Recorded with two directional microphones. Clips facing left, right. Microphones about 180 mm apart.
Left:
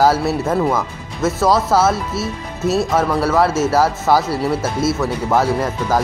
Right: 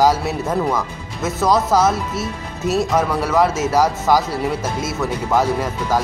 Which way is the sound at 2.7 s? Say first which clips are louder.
Left 1 dB; 15° right (ahead or behind).